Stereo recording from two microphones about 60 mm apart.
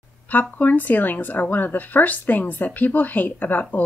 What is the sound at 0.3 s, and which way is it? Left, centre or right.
Speech, left.